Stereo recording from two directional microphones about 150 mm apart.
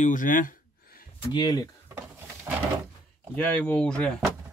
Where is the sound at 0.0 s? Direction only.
60° left (ahead or behind).